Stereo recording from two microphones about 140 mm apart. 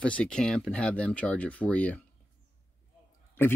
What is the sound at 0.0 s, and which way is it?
Speech, 10° left (ahead or behind).